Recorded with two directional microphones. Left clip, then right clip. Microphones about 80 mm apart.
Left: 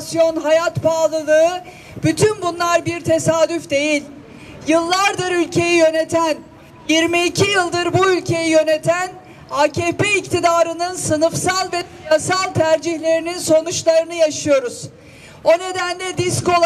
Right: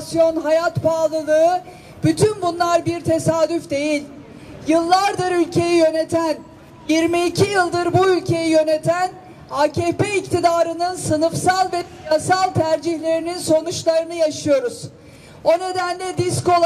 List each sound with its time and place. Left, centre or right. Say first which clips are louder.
0.0 s a man's voice: left 1 dB; left